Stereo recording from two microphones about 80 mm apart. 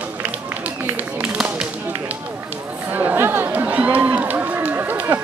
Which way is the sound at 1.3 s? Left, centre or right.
Centre.